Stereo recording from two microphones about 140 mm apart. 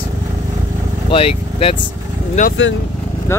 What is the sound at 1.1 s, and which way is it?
Speech, 40° left (ahead or behind).